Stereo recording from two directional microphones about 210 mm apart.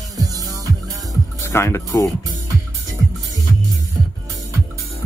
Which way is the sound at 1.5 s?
10° left (ahead or behind).